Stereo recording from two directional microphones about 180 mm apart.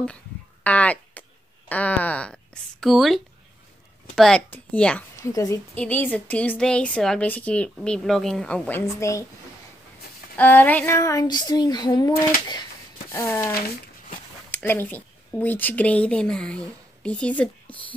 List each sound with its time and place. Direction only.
0.7 s a woman's voice: 10° left (ahead or behind)
5.1 s a woman's voice: 20° left (ahead or behind)
10.3 s speech: 10° left (ahead or behind)
13.1 s a woman's voice: 15° left (ahead or behind)